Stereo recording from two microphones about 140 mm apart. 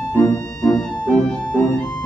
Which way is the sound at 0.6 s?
5° left (ahead or behind).